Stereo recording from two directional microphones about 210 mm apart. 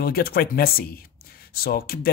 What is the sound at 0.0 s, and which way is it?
Speech, 45° left (ahead or behind).